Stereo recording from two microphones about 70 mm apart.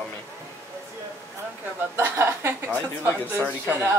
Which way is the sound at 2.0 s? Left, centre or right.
Right.